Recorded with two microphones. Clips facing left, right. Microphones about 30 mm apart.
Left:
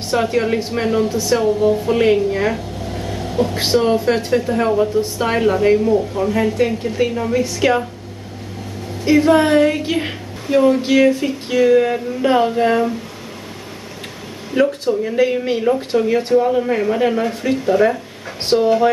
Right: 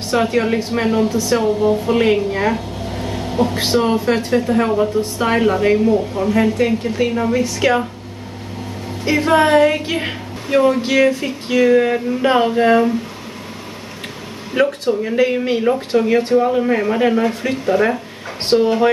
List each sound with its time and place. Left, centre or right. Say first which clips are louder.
0.1 s a woman's voice: right 1 dB; centre
3.0 s a sound: right 1 dB; centre
3.7 s a woman's voice: left 1 dB; centre
9.0 s a woman's voice: left 1 dB; centre
14.5 s a woman's voice: even; right